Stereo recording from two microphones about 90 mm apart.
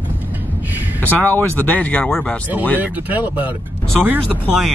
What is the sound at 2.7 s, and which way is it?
Speech, 20° right (ahead or behind).